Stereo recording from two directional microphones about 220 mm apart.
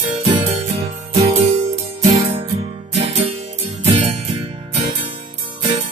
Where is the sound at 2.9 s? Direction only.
25° right (ahead or behind).